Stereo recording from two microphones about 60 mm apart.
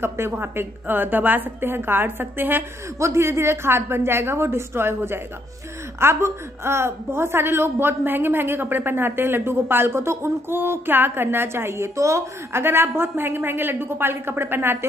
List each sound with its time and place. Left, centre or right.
0.0 s a woman's voice: right
3.0 s a woman's voice: right